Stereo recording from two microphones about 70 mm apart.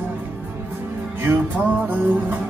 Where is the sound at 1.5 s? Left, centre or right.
Right.